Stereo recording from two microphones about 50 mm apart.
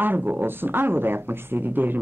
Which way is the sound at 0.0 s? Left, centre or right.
Right.